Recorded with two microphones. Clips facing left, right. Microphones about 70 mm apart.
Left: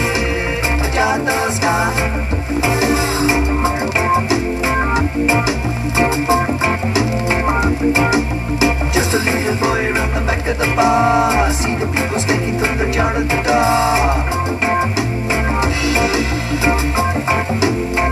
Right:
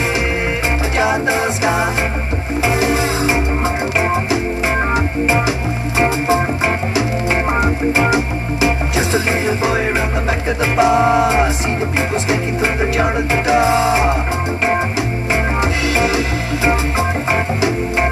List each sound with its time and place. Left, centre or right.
2.6 s music: left
5.9 s music: right
7.6 s organ: right
8.9 s music: left
13.6 s music: left